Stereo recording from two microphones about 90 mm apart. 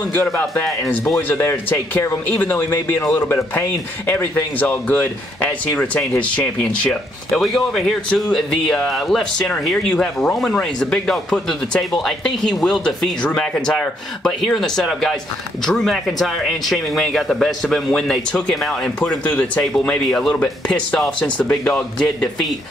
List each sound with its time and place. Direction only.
0.1 s speech: 20° left (ahead or behind)
4.1 s speech: 20° left (ahead or behind)
7.3 s speech: centre (ahead or behind)